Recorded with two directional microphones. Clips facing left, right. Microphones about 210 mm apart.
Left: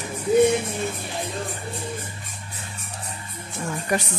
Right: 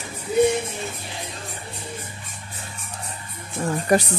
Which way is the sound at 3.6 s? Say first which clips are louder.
Right 6 dB; 35° right (ahead or behind).